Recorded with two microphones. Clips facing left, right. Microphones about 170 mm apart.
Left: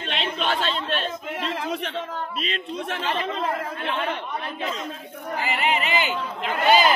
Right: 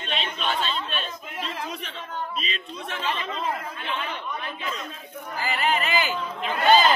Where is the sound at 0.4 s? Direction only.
75° left (ahead or behind).